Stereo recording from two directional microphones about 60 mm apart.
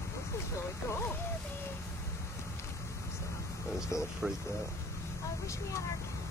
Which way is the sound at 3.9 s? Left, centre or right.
Left.